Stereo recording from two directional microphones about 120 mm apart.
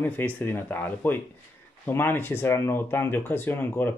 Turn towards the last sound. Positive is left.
turn(degrees=20)  # may be behind; listen again after turning